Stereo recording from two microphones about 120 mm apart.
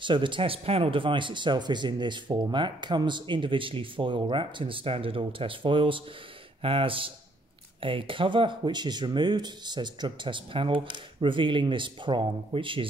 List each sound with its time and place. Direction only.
0.0 s speech: 40° right (ahead or behind)